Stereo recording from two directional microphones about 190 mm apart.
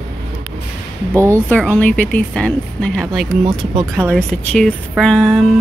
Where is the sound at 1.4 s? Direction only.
10° left (ahead or behind).